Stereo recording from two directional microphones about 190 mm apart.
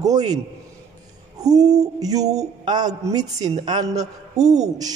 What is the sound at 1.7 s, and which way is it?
A man's voice, 20° right (ahead or behind).